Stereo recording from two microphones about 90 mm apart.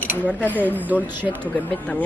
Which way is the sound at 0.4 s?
20° left (ahead or behind).